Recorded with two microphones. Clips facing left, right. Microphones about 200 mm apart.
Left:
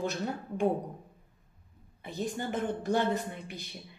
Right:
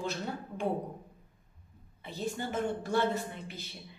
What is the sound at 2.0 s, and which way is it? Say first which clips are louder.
A woman's voice: left 1 dB; 15° left (ahead or behind).